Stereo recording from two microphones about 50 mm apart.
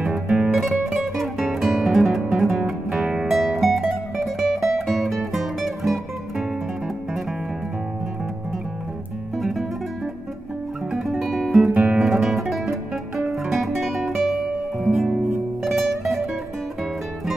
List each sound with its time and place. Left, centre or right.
0.0 s music: centre
9.4 s guitar: centre
10.9 s music: centre
13.2 s guitar: centre
15.6 s music: centre